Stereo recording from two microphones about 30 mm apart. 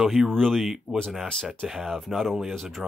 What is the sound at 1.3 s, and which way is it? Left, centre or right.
Speech, left.